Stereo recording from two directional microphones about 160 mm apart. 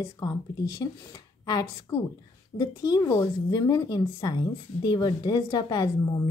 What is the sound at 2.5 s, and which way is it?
Speech, 25° left (ahead or behind).